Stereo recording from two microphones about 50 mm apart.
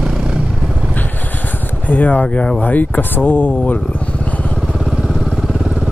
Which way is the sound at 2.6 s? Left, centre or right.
Left.